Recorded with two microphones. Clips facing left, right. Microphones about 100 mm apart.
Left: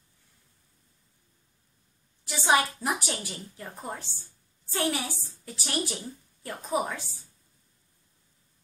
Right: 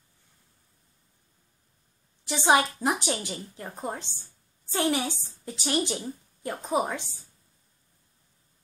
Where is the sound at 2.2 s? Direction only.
20° right (ahead or behind).